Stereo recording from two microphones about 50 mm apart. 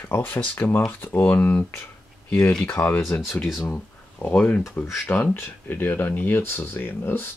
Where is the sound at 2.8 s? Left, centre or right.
Left.